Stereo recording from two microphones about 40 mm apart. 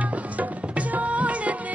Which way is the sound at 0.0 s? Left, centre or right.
Right.